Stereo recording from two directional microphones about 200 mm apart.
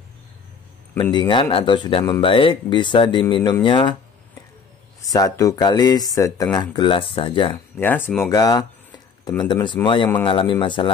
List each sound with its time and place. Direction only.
1.1 s speech: 25° left (ahead or behind)
5.1 s speech: 15° left (ahead or behind)
7.8 s speech: 10° left (ahead or behind); by 10.9 s 25° left (ahead or behind)